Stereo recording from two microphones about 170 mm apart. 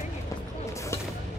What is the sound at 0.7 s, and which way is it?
Music, 15° left (ahead or behind).